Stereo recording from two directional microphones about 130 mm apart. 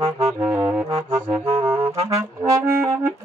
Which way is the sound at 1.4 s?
25° right (ahead or behind).